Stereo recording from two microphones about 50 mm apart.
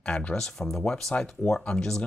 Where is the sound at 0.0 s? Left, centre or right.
Left.